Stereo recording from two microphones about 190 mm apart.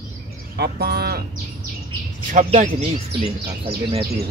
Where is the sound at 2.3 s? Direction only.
40° right (ahead or behind).